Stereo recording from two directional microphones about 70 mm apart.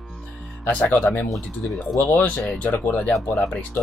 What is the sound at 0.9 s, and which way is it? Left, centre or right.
Speech, left.